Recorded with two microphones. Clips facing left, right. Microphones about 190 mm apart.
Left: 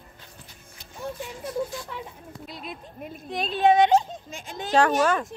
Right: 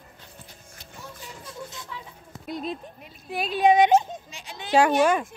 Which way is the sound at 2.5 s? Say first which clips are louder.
Right 9 dB; 45° right (ahead or behind).